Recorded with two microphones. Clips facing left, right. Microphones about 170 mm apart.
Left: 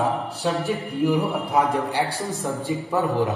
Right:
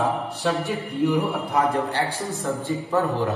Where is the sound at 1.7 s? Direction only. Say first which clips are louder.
Left 1 dB; 15° left (ahead or behind).